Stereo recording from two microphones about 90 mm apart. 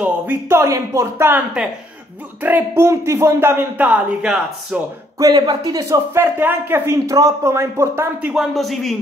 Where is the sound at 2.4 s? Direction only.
25° right (ahead or behind).